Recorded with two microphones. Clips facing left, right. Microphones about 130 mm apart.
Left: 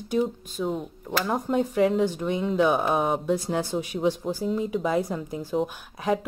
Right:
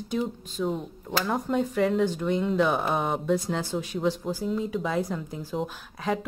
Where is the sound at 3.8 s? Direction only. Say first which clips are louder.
Left 2 dB; 15° left (ahead or behind).